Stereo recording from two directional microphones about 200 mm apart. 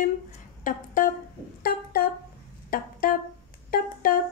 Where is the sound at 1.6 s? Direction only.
50° left (ahead or behind).